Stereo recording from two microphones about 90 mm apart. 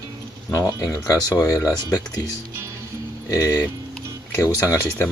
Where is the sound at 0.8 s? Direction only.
40° left (ahead or behind).